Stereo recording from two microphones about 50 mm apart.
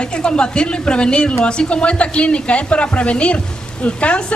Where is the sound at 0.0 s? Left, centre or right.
Centre.